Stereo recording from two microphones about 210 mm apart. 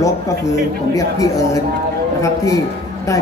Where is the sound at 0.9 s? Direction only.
15° left (ahead or behind).